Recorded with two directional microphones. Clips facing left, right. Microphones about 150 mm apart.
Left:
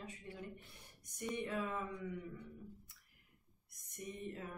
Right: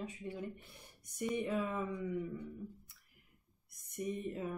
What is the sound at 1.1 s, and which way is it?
Speech, 10° right (ahead or behind).